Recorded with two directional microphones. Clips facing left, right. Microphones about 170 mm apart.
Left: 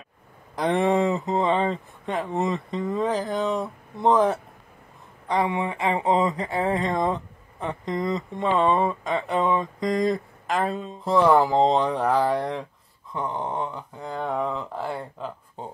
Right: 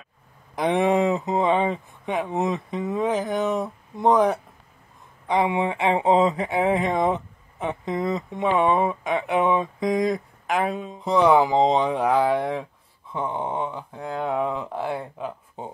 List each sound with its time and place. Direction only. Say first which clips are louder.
0.6 s speech: right 1 dB; 15° right (ahead or behind)
5.3 s speech: right 2 dB; 15° right (ahead or behind)
7.6 s speech: right 1 dB; 10° right (ahead or behind)
10.0 s speech: even; centre (ahead or behind)